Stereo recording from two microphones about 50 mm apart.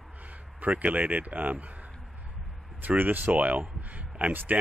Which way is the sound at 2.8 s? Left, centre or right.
Right.